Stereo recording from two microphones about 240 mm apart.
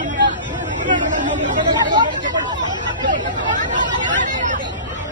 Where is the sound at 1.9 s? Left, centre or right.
Centre.